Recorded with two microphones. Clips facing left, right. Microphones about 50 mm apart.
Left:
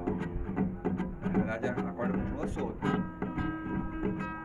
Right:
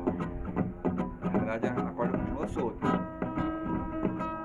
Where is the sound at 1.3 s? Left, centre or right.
Centre.